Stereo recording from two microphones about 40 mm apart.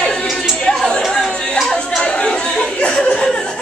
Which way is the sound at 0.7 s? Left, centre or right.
Centre.